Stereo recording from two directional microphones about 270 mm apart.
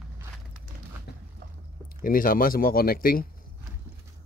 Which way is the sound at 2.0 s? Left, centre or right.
Left.